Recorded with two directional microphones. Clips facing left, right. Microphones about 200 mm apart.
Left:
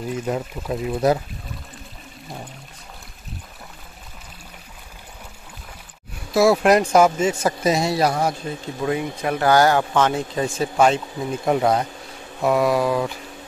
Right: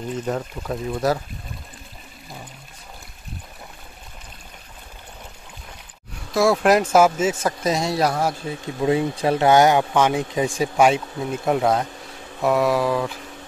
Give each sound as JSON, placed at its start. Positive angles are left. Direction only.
{"t": 0.0, "sound": "speech", "side_deg": 10}
{"t": 6.3, "sound": "speech", "side_deg": 5}
{"t": 8.8, "sound": "speech", "side_deg": -30}